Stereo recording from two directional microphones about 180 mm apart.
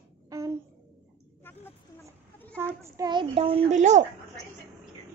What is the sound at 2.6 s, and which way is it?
A child's voice, 20° right (ahead or behind).